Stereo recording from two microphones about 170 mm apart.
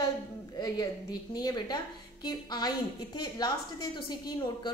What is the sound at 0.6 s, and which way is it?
A woman's voice, 25° left (ahead or behind).